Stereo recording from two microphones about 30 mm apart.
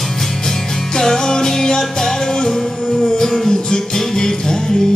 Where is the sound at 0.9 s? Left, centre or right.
Centre.